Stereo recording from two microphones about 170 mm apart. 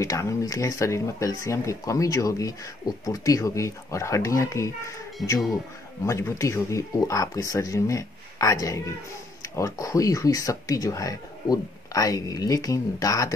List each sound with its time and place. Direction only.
0.0 s speech: 20° left (ahead or behind)